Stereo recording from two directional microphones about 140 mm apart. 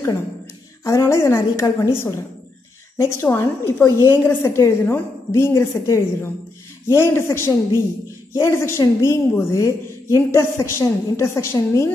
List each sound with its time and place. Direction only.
0.8 s a woman's voice: 20° left (ahead or behind)